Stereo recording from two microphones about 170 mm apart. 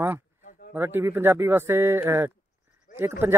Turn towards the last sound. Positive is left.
turn(degrees=-10)  # may be behind; listen again after turning